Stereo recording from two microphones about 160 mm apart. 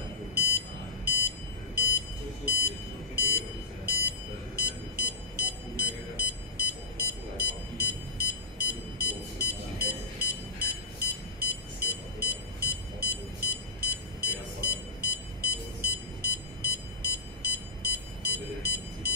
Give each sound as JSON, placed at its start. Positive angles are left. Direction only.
{"t": 0.3, "sound": "alarm", "side_deg": -75}
{"t": 2.4, "sound": "a sound", "side_deg": -75}
{"t": 3.2, "sound": "alarm clock", "side_deg": -75}
{"t": 4.6, "sound": "music", "side_deg": -75}